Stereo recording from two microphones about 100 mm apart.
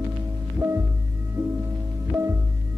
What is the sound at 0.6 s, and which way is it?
Music, 25° right (ahead or behind).